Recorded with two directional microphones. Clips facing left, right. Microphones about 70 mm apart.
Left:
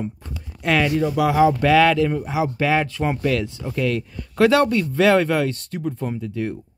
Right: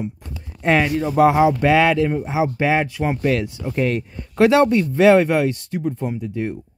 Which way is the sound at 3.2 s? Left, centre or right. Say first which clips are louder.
Right 2 dB; centre.